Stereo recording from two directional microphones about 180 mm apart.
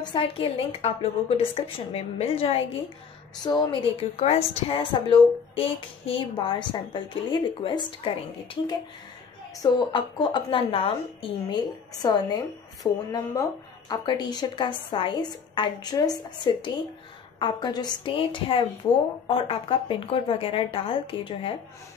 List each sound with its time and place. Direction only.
0.0 s a woman's voice: 30° left (ahead or behind)
9.6 s a woman's voice: 25° left (ahead or behind)